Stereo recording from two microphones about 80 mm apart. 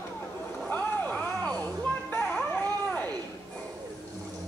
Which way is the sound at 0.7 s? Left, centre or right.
Centre.